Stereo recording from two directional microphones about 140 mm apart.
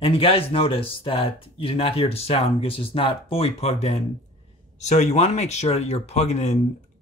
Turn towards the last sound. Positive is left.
turn(degrees=50)  # may be behind; listen again after turning